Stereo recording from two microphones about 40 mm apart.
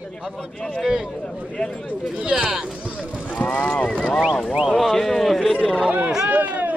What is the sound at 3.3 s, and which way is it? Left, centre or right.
Speech, left.